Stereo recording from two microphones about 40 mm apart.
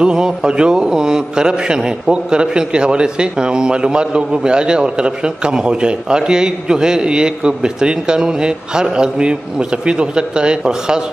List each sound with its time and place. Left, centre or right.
0.0 s a man's voice: centre